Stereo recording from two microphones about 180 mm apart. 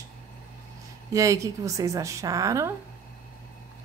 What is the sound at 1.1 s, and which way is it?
A woman's voice, 20° right (ahead or behind).